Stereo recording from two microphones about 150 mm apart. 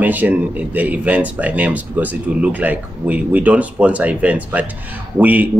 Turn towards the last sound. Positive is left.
turn(degrees=-10)  # may be behind; listen again after turning